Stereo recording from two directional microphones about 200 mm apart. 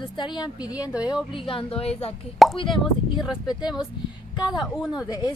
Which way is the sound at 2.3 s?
Centre (ahead or behind).